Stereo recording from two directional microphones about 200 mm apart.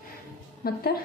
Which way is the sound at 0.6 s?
50° left (ahead or behind).